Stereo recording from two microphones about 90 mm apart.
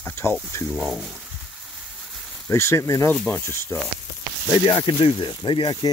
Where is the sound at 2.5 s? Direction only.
30° left (ahead or behind).